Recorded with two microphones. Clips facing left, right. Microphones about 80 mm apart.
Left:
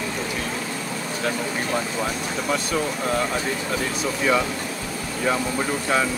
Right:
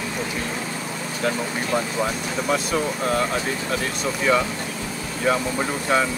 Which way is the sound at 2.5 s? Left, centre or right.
Centre.